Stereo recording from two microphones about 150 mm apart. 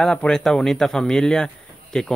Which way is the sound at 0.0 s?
5° left (ahead or behind).